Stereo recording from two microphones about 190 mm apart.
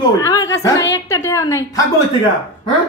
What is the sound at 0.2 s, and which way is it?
Speech, 15° left (ahead or behind).